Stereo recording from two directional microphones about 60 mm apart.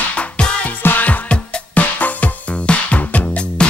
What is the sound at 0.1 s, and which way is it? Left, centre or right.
Music, left.